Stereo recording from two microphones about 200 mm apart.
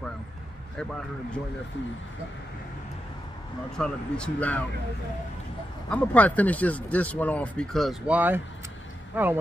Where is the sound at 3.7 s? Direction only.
5° left (ahead or behind).